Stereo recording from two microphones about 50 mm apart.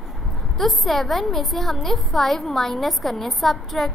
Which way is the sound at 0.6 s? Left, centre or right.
Centre.